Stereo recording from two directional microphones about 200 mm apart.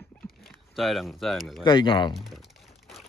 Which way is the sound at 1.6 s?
25° left (ahead or behind).